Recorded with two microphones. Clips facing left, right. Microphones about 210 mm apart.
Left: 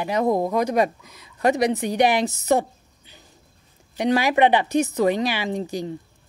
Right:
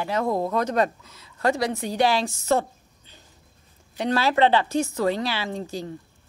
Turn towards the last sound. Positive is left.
turn(degrees=20)  # may be behind; listen again after turning